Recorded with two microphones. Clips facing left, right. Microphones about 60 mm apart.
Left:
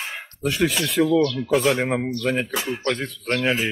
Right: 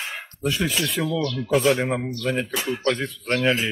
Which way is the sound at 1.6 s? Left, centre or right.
Left.